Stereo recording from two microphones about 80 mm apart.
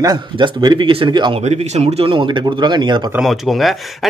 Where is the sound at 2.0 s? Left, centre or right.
Right.